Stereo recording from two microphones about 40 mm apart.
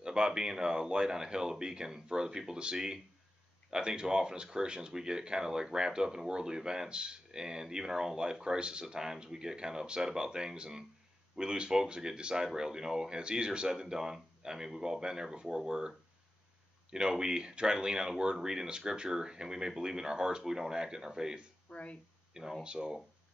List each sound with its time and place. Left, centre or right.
0.0 s speech: centre
16.9 s speech: centre
21.6 s speech: left
22.6 s speech: right